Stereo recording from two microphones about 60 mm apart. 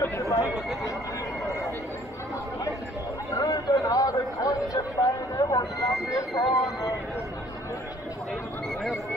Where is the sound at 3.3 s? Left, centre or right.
Left.